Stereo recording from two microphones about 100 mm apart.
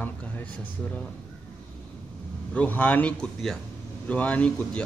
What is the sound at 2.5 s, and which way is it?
A man's voice, 15° left (ahead or behind).